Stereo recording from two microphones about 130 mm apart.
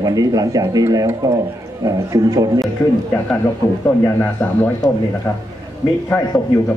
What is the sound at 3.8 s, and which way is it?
Speech, 15° left (ahead or behind).